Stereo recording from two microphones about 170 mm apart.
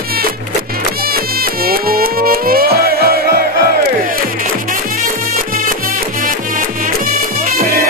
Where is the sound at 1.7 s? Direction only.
60° right (ahead or behind).